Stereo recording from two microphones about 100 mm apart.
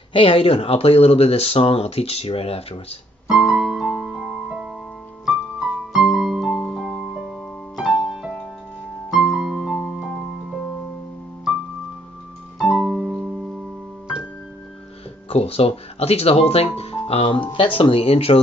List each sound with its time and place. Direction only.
0.1 s speech: 65° left (ahead or behind); by 2.8 s 80° left
3.3 s keyboard: 5° right (ahead or behind)
4.0 s music: centre (ahead or behind)
5.9 s music: 5° right (ahead or behind)
12.5 s piano: 5° right (ahead or behind)
15.2 s speech: 80° left